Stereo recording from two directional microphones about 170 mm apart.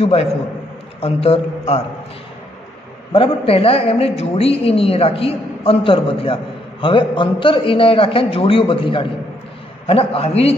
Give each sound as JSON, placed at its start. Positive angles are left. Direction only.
{"t": 0.0, "sound": "a woman's voice", "side_deg": 35}
{"t": 3.1, "sound": "a woman's voice", "side_deg": 35}